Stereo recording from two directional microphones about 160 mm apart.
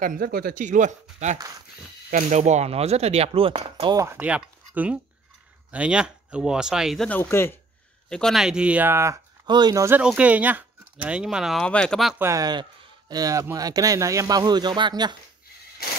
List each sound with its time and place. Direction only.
0.0 s speech: 65° right (ahead or behind); by 4.0 s 30° right (ahead or behind)
4.0 s speech: 10° right (ahead or behind)
7.1 s speech: 15° left (ahead or behind)
8.1 s speech: 5° left (ahead or behind); by 9.8 s 25° right (ahead or behind)
9.8 s speech: 10° right (ahead or behind)
12.2 s speech: 20° right (ahead or behind)